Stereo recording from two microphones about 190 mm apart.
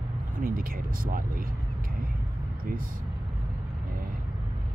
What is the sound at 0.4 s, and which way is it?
Speech, 50° right (ahead or behind).